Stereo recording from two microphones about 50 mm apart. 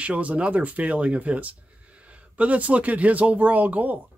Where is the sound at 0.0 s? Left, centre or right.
Right.